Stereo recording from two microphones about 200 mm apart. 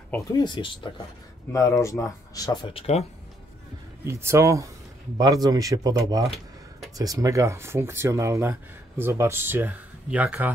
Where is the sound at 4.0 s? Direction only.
15° right (ahead or behind).